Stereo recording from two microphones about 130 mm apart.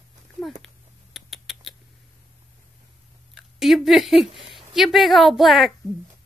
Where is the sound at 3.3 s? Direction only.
Centre (ahead or behind).